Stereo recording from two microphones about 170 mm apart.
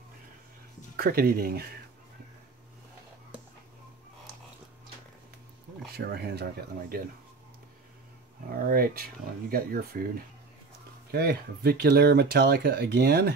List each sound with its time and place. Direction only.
0.9 s speech: 60° right (ahead or behind)
5.9 s speech: 70° right (ahead or behind)
8.6 s speech: 60° right (ahead or behind)